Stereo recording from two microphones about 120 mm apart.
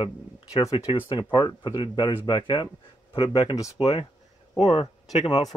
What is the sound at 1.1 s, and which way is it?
Speech, 40° left (ahead or behind).